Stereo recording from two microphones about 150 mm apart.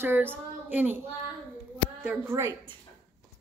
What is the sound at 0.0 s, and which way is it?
Child singing, 15° right (ahead or behind).